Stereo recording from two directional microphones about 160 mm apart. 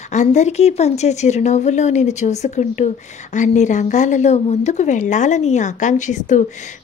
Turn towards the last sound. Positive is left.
turn(degrees=50)  # may be behind; listen again after turning